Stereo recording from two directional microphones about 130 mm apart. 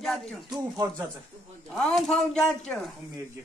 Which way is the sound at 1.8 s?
5° left (ahead or behind).